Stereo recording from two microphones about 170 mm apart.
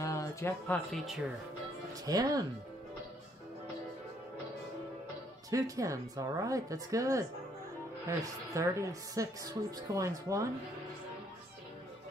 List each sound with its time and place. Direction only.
0.0 s music: 20° left (ahead or behind)
0.9 s speech: centre (ahead or behind)
2.0 s a woman's voice: 20° right (ahead or behind)
5.5 s a woman's voice: 20° right (ahead or behind)